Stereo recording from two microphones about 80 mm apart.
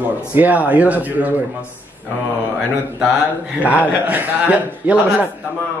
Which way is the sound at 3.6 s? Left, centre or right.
Centre.